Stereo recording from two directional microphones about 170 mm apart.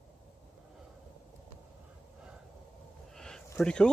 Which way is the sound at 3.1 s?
5° left (ahead or behind).